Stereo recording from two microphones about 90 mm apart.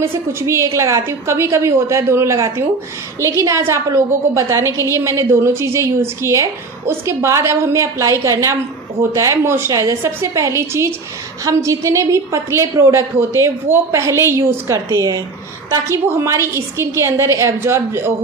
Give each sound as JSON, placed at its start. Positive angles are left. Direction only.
{"t": 0.0, "sound": "a woman's voice", "side_deg": -25}